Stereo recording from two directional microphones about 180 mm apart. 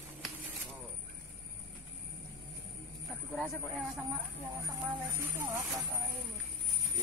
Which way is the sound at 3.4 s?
Centre (ahead or behind).